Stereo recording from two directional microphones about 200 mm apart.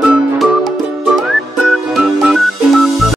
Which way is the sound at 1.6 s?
Centre (ahead or behind).